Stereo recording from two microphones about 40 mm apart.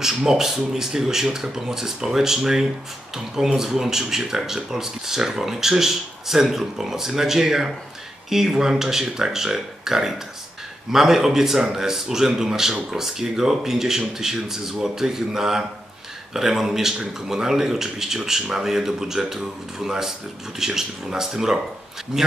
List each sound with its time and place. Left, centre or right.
0.0 s speech: centre